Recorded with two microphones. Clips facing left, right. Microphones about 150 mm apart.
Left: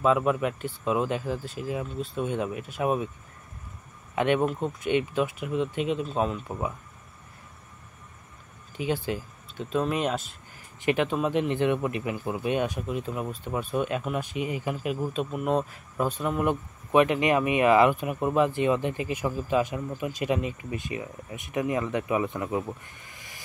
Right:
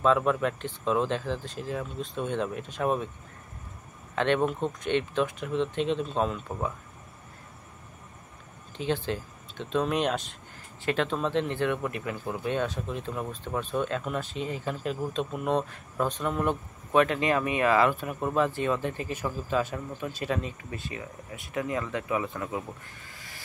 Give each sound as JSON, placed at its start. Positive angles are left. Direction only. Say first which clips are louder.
{"t": 0.0, "sound": "speech", "louder": "left 1 dB", "side_deg": 10}
{"t": 4.1, "sound": "speech", "louder": "left 1 dB", "side_deg": 10}
{"t": 8.7, "sound": "speech", "louder": "left 1 dB", "side_deg": 10}
{"t": 23.1, "sound": "vehicle", "louder": "even", "side_deg": 20}